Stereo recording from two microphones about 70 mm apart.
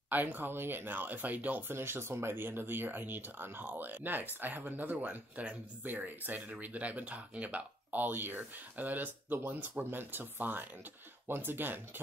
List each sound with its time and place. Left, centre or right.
0.1 s speech: right
1.7 s speech: right